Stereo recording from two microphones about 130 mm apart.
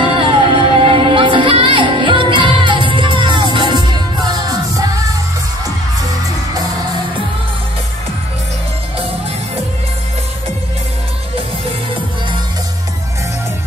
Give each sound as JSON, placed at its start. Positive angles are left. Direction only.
{"t": 0.0, "sound": "music", "side_deg": -45}